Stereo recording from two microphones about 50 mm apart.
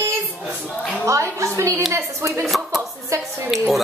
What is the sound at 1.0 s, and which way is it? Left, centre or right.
A woman's voice, right.